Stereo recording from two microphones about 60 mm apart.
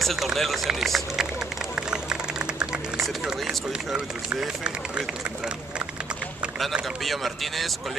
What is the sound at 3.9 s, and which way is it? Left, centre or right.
Speech, centre.